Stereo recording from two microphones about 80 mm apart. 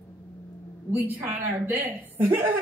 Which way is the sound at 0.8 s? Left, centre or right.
Right.